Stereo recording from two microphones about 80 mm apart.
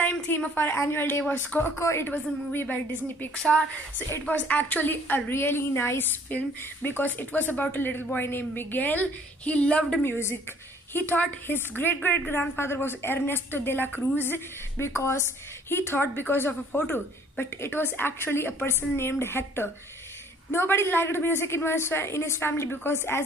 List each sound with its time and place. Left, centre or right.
0.0 s a woman's voice: centre; by 2.0 s left
2.0 s a woman's voice: left
10.0 s a woman's voice: left